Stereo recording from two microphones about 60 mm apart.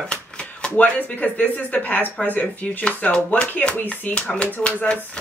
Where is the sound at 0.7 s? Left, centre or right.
Left.